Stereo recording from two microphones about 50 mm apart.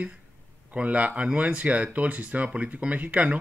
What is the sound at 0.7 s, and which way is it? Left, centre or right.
Speech, right.